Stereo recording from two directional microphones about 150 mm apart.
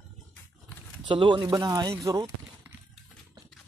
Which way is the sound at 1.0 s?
35° right (ahead or behind).